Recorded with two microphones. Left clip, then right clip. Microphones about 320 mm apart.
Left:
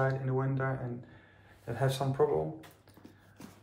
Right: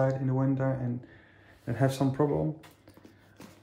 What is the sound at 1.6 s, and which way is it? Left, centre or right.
Speech, right.